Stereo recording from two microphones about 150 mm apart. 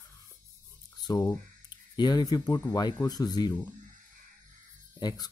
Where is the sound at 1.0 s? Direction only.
25° left (ahead or behind).